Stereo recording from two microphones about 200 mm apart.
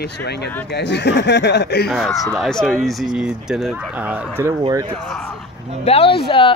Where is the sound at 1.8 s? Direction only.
Centre (ahead or behind).